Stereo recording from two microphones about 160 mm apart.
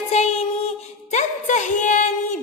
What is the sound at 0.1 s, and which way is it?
Music, 40° left (ahead or behind).